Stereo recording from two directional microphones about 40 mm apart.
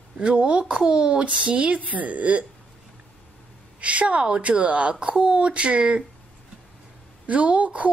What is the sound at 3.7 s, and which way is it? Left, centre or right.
Speech, right.